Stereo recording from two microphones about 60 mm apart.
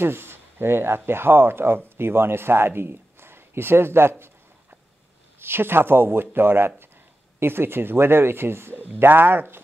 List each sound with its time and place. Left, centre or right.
0.0 s a man's voice: right
5.4 s speech: right